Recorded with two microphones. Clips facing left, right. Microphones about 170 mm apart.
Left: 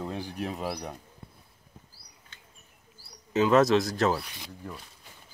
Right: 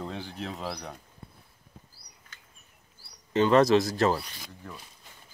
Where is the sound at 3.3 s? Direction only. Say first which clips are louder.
Right 1 dB; 5° left (ahead or behind).